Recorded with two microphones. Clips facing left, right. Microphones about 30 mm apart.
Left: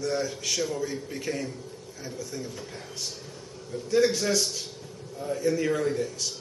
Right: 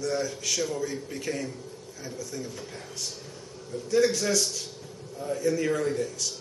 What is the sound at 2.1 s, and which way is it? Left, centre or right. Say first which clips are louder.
Speech: even; centre.